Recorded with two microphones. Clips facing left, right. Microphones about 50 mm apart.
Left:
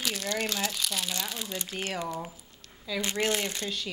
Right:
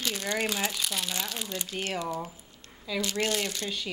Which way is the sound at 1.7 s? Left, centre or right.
Centre.